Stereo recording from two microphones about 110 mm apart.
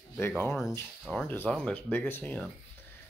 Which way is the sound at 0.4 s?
25° left (ahead or behind).